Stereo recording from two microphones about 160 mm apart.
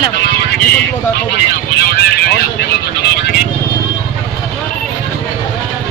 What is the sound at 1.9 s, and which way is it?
Speech, 85° left.